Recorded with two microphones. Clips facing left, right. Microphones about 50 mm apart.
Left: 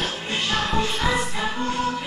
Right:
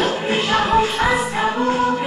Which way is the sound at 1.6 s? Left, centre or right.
Centre.